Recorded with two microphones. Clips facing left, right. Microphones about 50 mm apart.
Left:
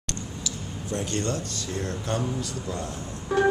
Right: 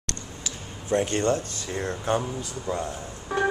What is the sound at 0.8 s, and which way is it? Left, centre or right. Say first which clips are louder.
Speech: right 6 dB; right.